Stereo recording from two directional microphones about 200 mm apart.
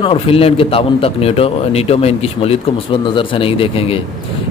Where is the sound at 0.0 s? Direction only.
30° left (ahead or behind).